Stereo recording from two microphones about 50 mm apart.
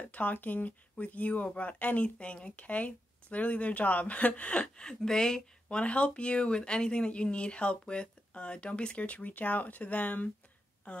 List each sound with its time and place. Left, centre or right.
0.1 s speech: left; by 5.8 s centre
5.8 s speech: left